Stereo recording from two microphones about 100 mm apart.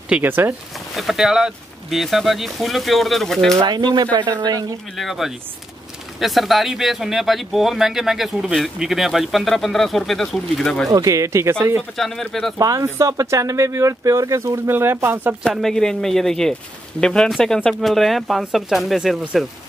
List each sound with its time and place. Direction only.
0.1 s speech: 20° right (ahead or behind)
0.9 s speech: centre (ahead or behind)
3.5 s speech: 45° right (ahead or behind)
4.9 s speech: centre (ahead or behind)
10.9 s speech: 35° right (ahead or behind)
12.0 s speech: 5° left (ahead or behind)
12.5 s speech: 35° right (ahead or behind)
15.4 s speech: centre (ahead or behind)